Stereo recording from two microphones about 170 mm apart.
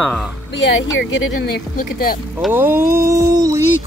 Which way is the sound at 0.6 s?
90° left.